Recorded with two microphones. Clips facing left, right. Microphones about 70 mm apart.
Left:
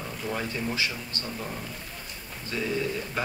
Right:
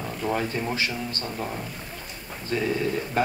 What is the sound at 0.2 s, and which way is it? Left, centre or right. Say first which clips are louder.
Speech: right 5 dB; right.